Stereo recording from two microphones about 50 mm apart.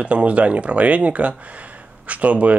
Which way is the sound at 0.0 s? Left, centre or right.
Right.